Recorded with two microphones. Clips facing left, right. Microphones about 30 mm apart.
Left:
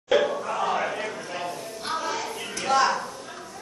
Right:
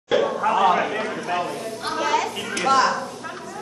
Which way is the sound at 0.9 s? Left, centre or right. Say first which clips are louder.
Right 5 dB; right.